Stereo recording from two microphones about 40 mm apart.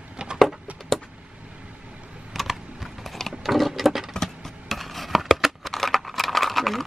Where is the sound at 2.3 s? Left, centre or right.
Centre.